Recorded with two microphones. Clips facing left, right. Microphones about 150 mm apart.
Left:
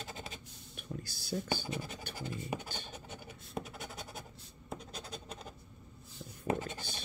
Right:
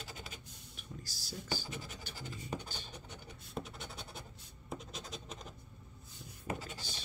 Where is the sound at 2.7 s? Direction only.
55° left (ahead or behind).